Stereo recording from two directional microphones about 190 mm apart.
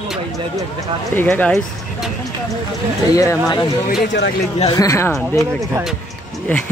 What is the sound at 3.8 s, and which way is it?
Speech, 65° left (ahead or behind).